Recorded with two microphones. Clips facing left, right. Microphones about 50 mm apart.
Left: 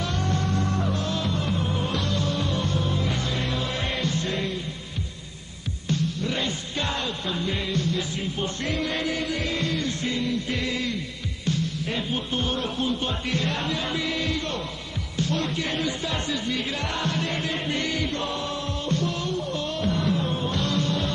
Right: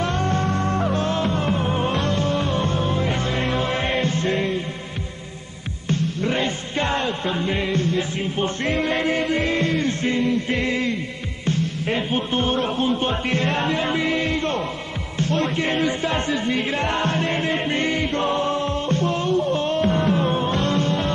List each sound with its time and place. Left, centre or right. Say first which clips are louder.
0.0 s music: right 5 dB; right
5.9 s music: right 4 dB; right